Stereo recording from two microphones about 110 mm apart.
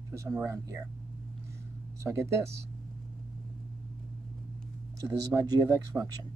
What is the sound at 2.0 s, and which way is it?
Speech, 25° right (ahead or behind).